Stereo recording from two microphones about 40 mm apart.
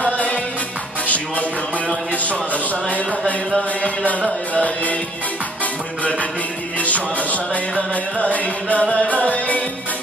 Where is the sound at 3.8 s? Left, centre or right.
Left.